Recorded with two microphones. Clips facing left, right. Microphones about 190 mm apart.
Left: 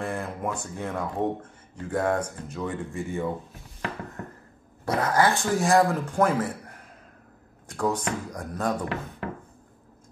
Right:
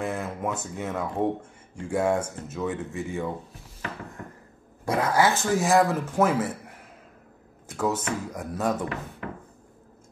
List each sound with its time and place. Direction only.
0.0 s speech: 5° right (ahead or behind)
4.8 s speech: 10° right (ahead or behind)
7.6 s speech: 5° right (ahead or behind)